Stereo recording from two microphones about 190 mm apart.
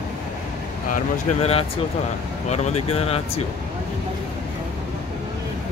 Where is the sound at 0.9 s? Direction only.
35° left (ahead or behind).